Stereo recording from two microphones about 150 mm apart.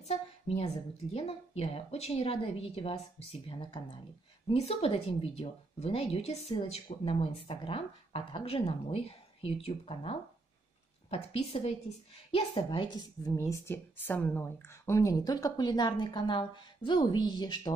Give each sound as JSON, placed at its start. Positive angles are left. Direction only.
{"t": 0.0, "sound": "a woman's voice", "side_deg": 45}